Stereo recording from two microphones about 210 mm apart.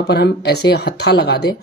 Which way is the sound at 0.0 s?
50° left (ahead or behind).